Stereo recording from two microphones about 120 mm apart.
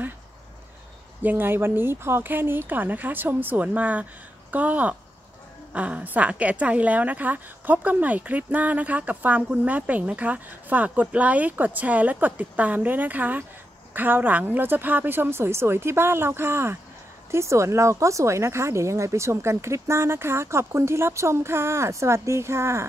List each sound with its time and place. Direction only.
1.2 s a woman's voice: 15° right (ahead or behind)